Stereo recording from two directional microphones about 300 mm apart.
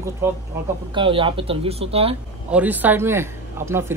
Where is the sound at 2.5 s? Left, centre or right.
Centre.